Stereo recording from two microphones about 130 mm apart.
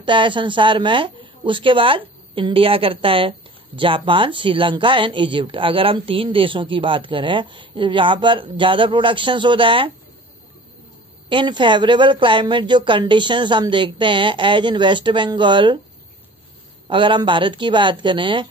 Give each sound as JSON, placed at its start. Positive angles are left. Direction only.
{"t": 0.0, "sound": "a woman's voice", "side_deg": -40}
{"t": 11.2, "sound": "a woman's voice", "side_deg": -40}
{"t": 16.8, "sound": "a woman's voice", "side_deg": -40}